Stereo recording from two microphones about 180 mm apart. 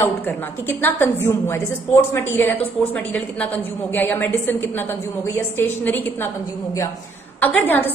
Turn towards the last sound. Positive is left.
turn(degrees=10)  # may be behind; listen again after turning